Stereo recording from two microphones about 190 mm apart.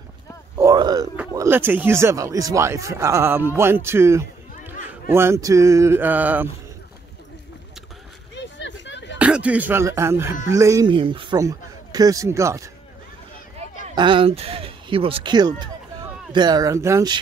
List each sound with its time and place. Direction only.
0.6 s speech: 20° right (ahead or behind)
8.4 s a sound: 70° left (ahead or behind)
9.2 s speech: 5° right (ahead or behind)
11.0 s speech: 25° right (ahead or behind)
13.9 s speech: 25° right (ahead or behind)